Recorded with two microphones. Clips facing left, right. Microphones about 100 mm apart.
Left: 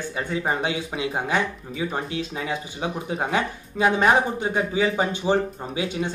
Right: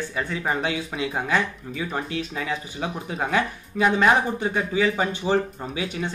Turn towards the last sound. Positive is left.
turn(degrees=20)  # may be behind; listen again after turning